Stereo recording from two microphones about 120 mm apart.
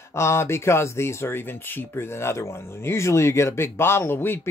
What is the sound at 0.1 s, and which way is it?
Speech, 20° left (ahead or behind).